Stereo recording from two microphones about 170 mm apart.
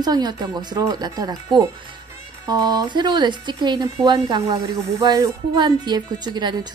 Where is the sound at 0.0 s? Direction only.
25° right (ahead or behind).